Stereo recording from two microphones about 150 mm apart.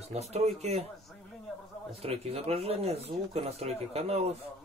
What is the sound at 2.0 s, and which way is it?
A man's voice, 40° right (ahead or behind).